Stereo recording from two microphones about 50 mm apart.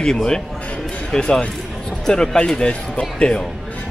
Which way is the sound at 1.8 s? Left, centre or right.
Centre.